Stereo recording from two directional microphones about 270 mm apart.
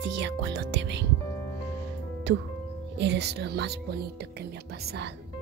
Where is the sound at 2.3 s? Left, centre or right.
Right.